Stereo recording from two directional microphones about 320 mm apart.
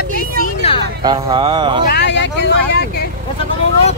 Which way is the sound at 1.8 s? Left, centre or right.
Left.